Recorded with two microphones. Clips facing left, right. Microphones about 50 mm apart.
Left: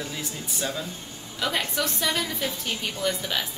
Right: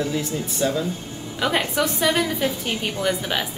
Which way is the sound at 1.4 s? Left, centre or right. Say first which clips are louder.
Right 5 dB; right.